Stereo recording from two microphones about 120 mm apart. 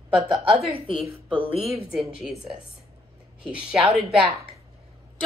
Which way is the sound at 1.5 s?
55° right (ahead or behind).